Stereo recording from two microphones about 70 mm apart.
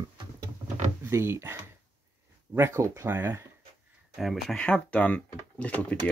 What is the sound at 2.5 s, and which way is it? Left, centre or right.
Speech, right.